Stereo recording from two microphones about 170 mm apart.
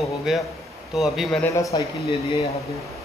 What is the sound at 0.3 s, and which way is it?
A man's voice, 5° right (ahead or behind).